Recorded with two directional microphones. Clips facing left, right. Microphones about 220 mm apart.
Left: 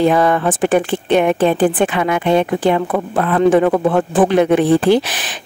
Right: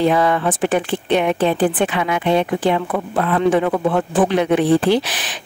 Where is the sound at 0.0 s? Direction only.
45° left (ahead or behind).